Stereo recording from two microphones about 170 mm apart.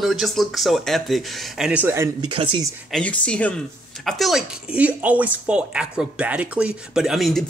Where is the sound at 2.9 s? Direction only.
5° left (ahead or behind).